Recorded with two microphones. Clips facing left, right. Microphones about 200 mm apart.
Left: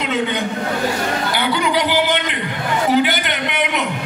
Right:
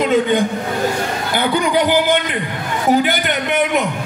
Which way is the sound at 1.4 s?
45° right (ahead or behind).